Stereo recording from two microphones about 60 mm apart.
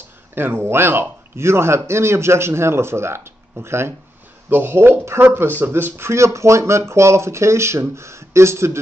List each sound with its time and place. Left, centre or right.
0.3 s a man's voice: right